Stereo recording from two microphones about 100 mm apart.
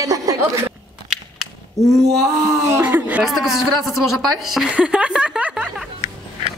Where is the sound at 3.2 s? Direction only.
Centre (ahead or behind).